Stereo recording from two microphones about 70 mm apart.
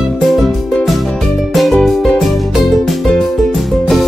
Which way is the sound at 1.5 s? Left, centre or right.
Centre.